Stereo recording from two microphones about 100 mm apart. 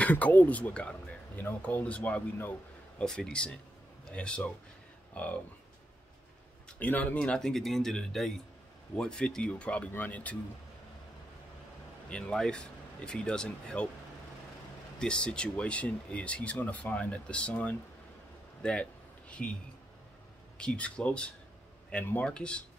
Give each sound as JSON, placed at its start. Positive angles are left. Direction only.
{"t": 0.0, "sound": "speech", "side_deg": 15}
{"t": 4.0, "sound": "a sound", "side_deg": 10}
{"t": 5.1, "sound": "speech", "side_deg": 15}
{"t": 6.8, "sound": "speech", "side_deg": 15}
{"t": 12.1, "sound": "speech", "side_deg": 10}
{"t": 15.0, "sound": "speech", "side_deg": 10}
{"t": 18.6, "sound": "a sound", "side_deg": 10}
{"t": 20.5, "sound": "speech", "side_deg": 10}